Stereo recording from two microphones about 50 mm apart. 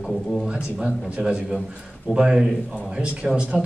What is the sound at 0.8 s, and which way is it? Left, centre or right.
A man's voice, centre.